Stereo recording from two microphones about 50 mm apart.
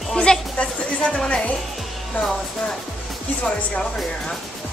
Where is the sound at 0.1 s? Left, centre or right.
Centre.